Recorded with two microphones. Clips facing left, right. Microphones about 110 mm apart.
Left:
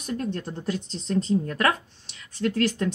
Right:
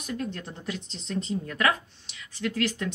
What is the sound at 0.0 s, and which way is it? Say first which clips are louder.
Speech: left 4 dB; 35° left (ahead or behind).